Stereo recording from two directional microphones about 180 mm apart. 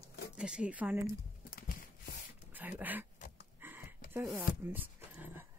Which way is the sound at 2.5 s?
10° right (ahead or behind).